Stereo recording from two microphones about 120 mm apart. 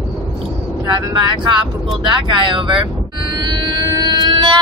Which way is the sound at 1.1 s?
40° right (ahead or behind).